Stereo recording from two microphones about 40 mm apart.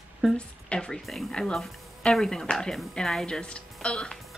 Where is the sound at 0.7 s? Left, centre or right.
Centre.